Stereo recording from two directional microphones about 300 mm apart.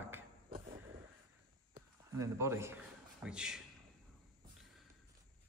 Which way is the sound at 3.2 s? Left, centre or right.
Centre.